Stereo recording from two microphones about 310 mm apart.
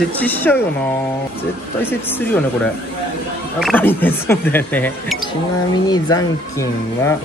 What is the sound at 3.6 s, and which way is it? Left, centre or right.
Speech, centre.